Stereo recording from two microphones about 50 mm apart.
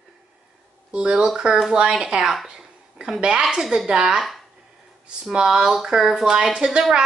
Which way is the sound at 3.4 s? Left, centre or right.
Centre.